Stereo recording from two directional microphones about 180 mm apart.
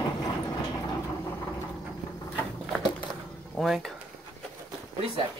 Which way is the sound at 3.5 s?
Centre (ahead or behind).